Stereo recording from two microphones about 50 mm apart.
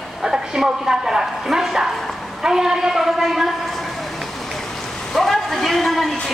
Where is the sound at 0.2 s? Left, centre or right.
Centre.